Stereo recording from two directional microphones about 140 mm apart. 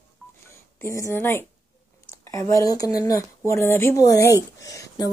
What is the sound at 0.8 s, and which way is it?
Speech, 20° left (ahead or behind).